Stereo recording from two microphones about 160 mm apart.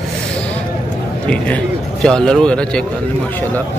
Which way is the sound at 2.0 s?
5° left (ahead or behind).